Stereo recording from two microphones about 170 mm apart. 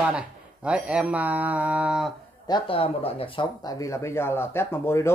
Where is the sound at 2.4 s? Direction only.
30° left (ahead or behind).